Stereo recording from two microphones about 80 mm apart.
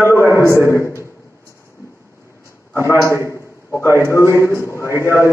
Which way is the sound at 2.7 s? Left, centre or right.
Left.